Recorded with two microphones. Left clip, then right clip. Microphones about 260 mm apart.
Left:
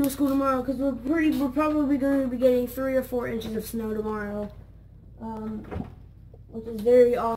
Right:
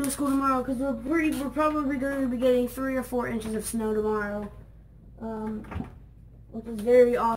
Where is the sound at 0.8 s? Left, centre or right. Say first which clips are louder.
Left 2 dB; centre.